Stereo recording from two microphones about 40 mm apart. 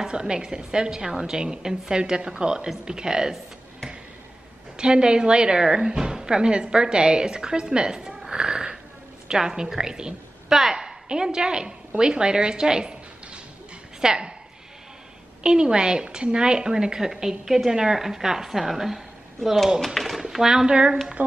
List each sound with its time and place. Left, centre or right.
0.1 s a woman's voice: centre
4.7 s a woman's voice: right
10.5 s a sound: centre
11.1 s speech: centre
14.0 s speech: right
15.4 s a woman's voice: right
19.8 s a sound: centre
20.2 s speech: centre
20.7 s speech: right